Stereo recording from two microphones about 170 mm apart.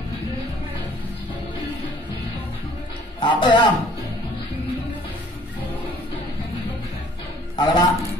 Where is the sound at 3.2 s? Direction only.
25° left (ahead or behind).